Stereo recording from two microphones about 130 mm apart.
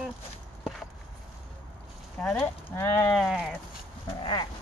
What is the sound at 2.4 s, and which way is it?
Speech, 20° left (ahead or behind).